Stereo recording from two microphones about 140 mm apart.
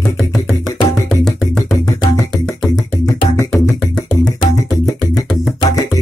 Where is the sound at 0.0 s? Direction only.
5° left (ahead or behind).